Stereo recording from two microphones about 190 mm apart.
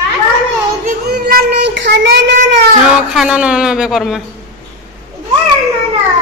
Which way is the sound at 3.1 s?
5° right (ahead or behind).